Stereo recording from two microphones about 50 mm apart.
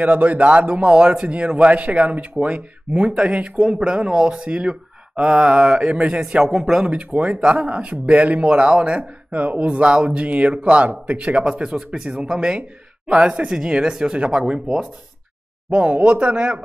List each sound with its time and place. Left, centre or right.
0.0 s speech: right
3.1 s speech: centre
6.4 s speech: centre
6.9 s speech: right